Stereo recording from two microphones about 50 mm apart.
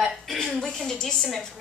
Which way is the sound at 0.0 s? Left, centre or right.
Centre.